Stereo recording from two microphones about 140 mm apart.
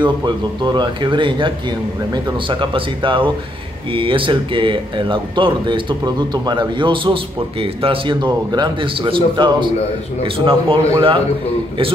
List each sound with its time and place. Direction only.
0.7 s speech: 35° right (ahead or behind)
2.6 s speech: 35° right (ahead or behind)